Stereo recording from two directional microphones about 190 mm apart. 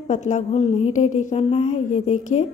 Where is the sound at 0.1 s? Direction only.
40° left (ahead or behind).